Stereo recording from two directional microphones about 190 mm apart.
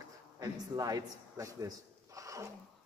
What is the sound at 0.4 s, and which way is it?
A man's voice, 20° right (ahead or behind).